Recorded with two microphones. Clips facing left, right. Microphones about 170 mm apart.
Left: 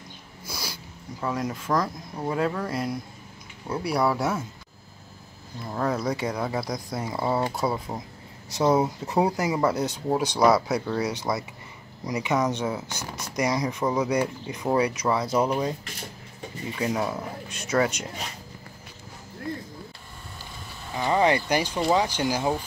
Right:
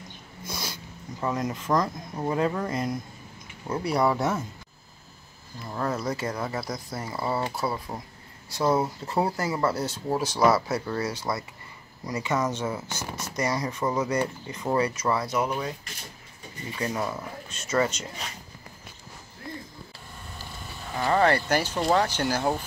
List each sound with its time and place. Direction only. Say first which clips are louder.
0.5 s dog: right 1 dB; 10° left (ahead or behind)
1.2 s speech: even; 5° left (ahead or behind)
5.7 s speech: left 2 dB; 5° left (ahead or behind)
15.2 s speech: left 4 dB; 30° left (ahead or behind)
16.7 s speech: left 2 dB; 5° left (ahead or behind)
21.0 s speech: even; 15° left (ahead or behind)